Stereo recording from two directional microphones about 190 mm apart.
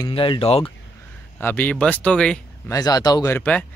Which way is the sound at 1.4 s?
10° left (ahead or behind).